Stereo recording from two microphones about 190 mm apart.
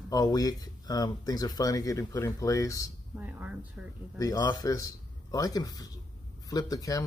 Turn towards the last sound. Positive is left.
turn(degrees=20)  # may be behind; listen again after turning